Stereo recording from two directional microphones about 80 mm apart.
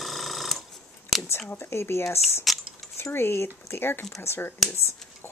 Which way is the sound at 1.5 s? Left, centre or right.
Left.